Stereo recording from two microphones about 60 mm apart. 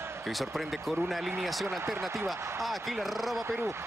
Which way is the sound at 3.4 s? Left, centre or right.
Right.